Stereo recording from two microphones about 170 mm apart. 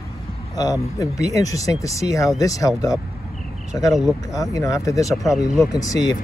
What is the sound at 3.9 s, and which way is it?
Speech, centre (ahead or behind).